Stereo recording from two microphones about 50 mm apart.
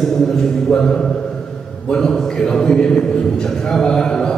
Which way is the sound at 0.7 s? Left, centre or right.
Centre.